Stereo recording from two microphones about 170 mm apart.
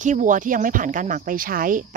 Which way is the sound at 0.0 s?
45° right (ahead or behind).